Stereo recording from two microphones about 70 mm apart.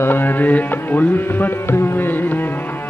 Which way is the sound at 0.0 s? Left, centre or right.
Left.